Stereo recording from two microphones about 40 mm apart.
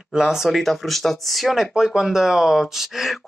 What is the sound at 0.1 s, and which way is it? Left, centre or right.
Speech, centre.